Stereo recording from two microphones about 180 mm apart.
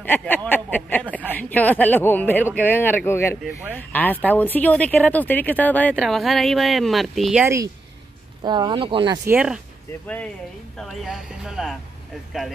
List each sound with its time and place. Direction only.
0.0 s speech: 10° left (ahead or behind)
7.4 s speech: 15° right (ahead or behind)
9.2 s speech: 10° right (ahead or behind)
10.0 s speech: 5° left (ahead or behind)